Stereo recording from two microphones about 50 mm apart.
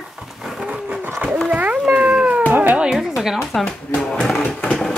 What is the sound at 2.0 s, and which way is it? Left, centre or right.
Cat, centre.